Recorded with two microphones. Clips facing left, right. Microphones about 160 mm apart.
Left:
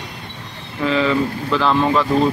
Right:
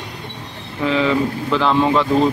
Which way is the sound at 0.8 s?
15° right (ahead or behind).